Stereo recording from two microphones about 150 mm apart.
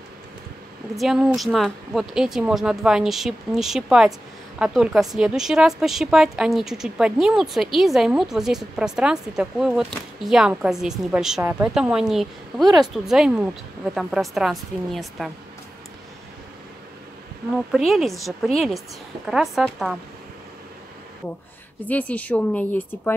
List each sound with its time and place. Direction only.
0.9 s a woman's voice: centre (ahead or behind)
12.6 s speech: 25° right (ahead or behind)
12.9 s a woman's voice: centre (ahead or behind)
17.6 s a woman's voice: centre (ahead or behind)
21.8 s speech: 10° left (ahead or behind)